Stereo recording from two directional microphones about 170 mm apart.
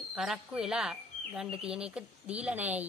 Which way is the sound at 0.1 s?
5° right (ahead or behind).